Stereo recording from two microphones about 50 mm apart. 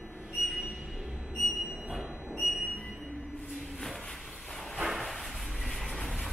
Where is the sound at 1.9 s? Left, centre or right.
Centre.